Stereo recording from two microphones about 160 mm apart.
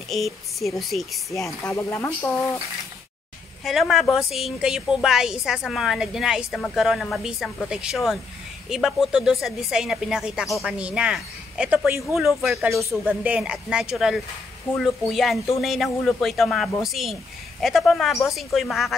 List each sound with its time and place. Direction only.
0.1 s speech: centre (ahead or behind)
1.6 s speech: 15° left (ahead or behind)
3.6 s speech: centre (ahead or behind)